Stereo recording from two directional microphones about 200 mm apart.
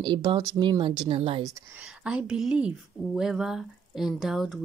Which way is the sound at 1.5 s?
10° right (ahead or behind).